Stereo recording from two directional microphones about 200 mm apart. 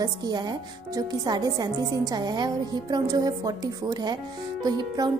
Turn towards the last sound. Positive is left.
turn(degrees=-20)  # may be behind; listen again after turning